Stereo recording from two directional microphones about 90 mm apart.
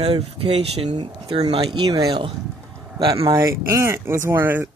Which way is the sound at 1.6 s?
45° right (ahead or behind).